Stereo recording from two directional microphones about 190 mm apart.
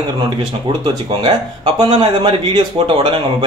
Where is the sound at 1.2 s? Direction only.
25° right (ahead or behind).